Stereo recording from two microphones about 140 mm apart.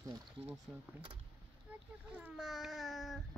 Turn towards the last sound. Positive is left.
turn(degrees=0)  # may be behind; listen again after turning